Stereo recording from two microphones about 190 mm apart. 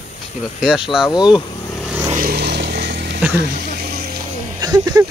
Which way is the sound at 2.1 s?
50° right (ahead or behind).